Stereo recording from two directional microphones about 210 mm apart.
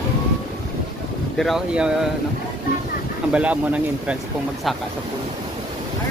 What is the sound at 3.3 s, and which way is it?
Speech, 5° right (ahead or behind).